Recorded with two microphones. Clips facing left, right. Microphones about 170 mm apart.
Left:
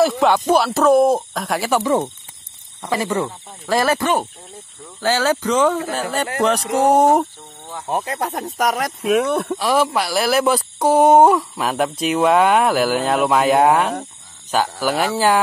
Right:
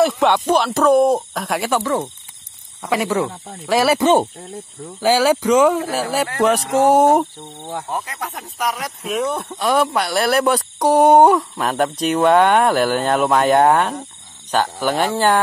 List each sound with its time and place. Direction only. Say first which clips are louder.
0.0 s speech: even; centre (ahead or behind)
4.0 s speech: right 5 dB; 25° right (ahead or behind)
5.0 s speech: right 3 dB; 10° right (ahead or behind)
7.9 s speech: left 9 dB; 30° left (ahead or behind); by 8.9 s 50° left (ahead or behind)
9.1 s speech: left 4 dB; 65° left (ahead or behind)
9.6 s speech: right 4 dB; centre (ahead or behind)